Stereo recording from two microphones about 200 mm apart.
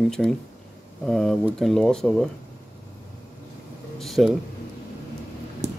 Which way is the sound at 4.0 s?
Centre (ahead or behind).